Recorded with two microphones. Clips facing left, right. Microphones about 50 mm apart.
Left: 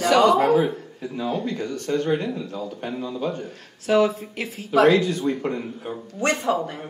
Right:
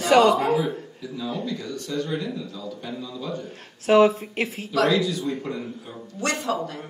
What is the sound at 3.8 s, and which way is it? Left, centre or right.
Speech, right.